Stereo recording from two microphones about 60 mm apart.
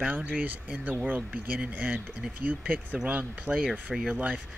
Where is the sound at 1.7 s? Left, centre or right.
Right.